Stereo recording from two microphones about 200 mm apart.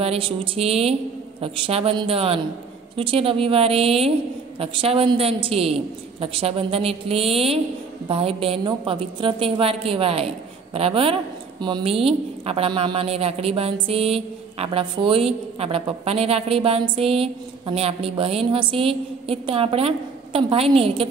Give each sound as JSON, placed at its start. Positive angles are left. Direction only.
{"t": 0.0, "sound": "a woman's voice", "side_deg": -30}